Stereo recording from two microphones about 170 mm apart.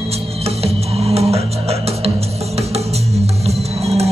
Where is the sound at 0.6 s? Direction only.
35° right (ahead or behind).